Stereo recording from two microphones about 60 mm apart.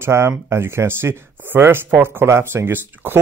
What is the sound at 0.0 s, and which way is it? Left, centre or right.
Speech, right.